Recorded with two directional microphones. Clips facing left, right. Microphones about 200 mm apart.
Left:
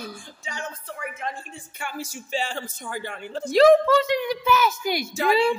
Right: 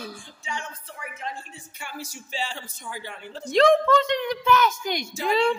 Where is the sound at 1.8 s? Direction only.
50° left (ahead or behind).